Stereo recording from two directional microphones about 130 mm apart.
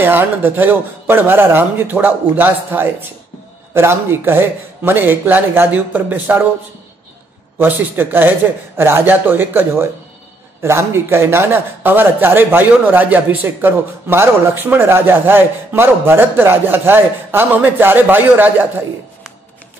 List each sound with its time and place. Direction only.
0.0 s a man's voice: 15° right (ahead or behind)
7.5 s a man's voice: 15° right (ahead or behind)